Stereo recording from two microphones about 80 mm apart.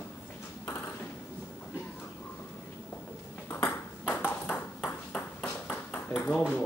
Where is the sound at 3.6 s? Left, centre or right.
Left.